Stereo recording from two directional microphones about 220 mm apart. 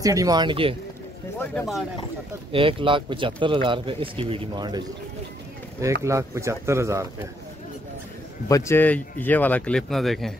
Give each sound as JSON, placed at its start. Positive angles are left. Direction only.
{"t": 0.0, "sound": "speech", "side_deg": -15}
{"t": 1.4, "sound": "speech", "side_deg": 10}
{"t": 2.5, "sound": "speech", "side_deg": -25}
{"t": 6.0, "sound": "speech", "side_deg": -15}
{"t": 8.5, "sound": "speech", "side_deg": 15}